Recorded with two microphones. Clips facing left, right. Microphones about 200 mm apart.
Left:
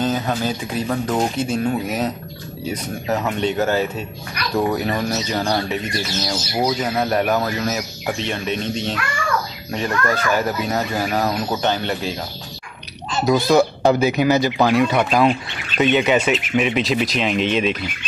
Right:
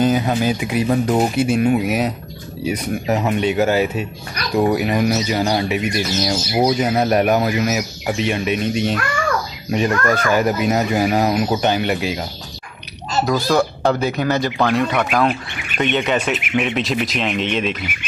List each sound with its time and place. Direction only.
0.0 s speech: 10° right (ahead or behind)
13.5 s speech: 5° left (ahead or behind)